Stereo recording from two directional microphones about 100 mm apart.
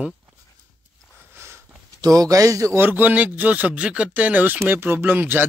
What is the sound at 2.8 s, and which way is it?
Speech, 15° right (ahead or behind).